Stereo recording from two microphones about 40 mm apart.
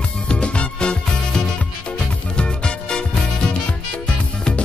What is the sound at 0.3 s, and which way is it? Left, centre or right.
Music, left.